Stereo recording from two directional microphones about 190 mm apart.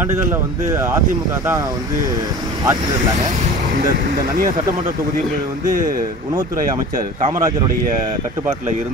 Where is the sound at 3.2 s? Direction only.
40° right (ahead or behind).